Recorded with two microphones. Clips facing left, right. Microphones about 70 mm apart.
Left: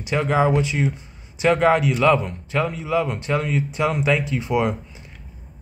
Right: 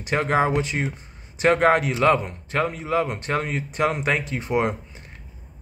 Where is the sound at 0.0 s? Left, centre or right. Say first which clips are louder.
Left 1 dB; right.